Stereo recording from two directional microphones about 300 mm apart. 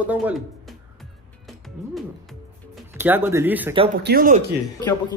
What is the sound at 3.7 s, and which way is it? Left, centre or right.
Speech, centre.